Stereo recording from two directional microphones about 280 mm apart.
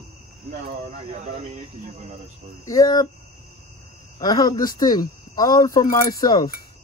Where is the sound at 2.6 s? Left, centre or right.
Centre.